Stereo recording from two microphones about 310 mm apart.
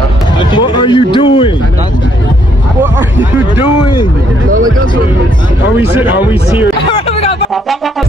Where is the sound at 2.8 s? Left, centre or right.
Centre.